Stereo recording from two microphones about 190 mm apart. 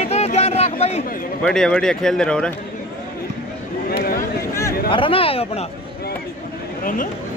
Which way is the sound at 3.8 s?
50° left (ahead or behind).